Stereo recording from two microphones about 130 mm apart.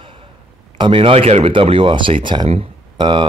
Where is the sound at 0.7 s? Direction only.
40° right (ahead or behind).